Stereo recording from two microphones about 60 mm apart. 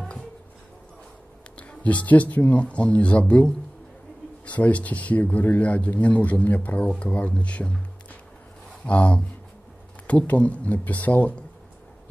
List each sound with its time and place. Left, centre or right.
1.6 s speech: left